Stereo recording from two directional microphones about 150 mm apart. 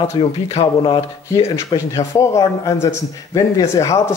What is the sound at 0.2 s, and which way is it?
Speech, 30° left (ahead or behind).